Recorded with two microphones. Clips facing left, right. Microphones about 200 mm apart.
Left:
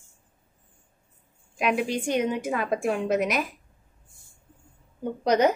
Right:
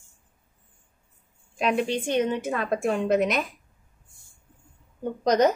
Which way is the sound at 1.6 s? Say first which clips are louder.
Right 1 dB; 10° left (ahead or behind).